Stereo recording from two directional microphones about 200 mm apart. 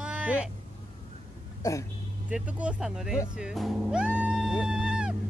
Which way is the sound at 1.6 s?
15° left (ahead or behind).